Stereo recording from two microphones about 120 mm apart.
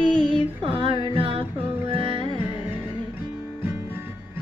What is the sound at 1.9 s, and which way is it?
Music, 50° right (ahead or behind).